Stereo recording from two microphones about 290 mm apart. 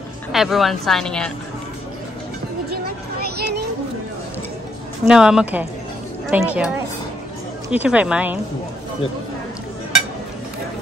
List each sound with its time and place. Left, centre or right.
0.3 s speech: centre
2.7 s a sound: right
5.0 s a woman's voice: centre
7.7 s speech: centre